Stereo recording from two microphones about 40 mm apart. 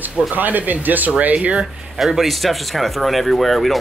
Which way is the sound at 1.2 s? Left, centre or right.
Right.